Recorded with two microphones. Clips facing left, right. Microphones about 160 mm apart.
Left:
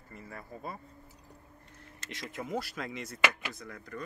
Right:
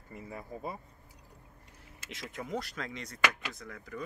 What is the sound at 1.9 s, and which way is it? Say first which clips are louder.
Speech: left 1 dB; 5° right (ahead or behind).